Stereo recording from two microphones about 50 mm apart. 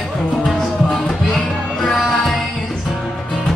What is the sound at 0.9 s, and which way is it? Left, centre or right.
Music, centre.